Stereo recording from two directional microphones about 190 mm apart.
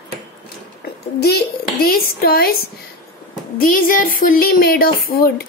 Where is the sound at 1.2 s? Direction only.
55° left (ahead or behind).